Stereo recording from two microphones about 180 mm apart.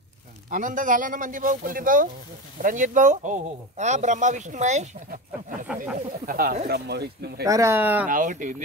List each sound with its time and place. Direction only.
0.5 s speech: 45° right (ahead or behind)
7.4 s speech: 15° right (ahead or behind)
8.1 s speech: 45° right (ahead or behind)